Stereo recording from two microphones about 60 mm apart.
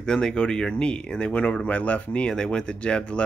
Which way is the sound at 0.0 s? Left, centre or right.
Centre.